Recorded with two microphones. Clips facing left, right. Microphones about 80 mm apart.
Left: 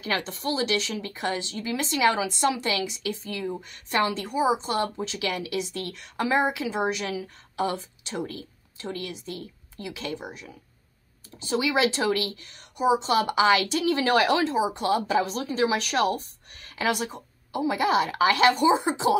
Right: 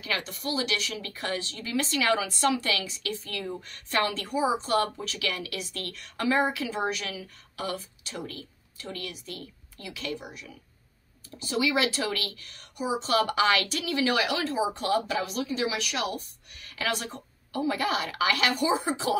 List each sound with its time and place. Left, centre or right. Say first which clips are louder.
0.0 s speech: left 4 dB; left
14.4 s speech: left 4 dB; centre
16.8 s speech: left 4 dB; centre